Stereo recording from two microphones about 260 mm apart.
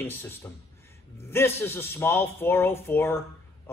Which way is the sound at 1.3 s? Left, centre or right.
Centre.